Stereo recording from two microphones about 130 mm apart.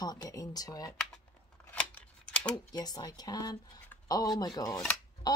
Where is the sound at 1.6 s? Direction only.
10° left (ahead or behind).